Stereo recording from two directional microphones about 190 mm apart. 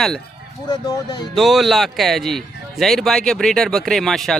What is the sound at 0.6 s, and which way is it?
Speech, 20° left (ahead or behind).